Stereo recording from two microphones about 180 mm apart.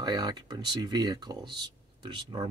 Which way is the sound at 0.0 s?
20° right (ahead or behind).